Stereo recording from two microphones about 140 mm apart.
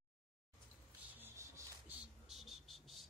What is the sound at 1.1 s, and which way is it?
Rub, 15° right (ahead or behind).